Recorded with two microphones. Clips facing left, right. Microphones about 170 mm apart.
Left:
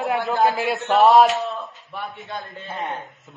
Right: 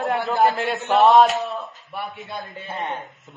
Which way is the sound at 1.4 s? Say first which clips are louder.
Even; 20° right (ahead or behind).